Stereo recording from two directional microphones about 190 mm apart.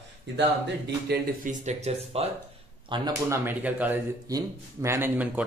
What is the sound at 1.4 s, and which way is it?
Speech, 40° right (ahead or behind).